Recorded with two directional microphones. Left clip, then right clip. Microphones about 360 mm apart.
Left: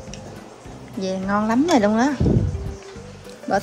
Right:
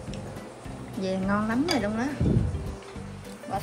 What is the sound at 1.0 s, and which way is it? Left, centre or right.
Speech, centre.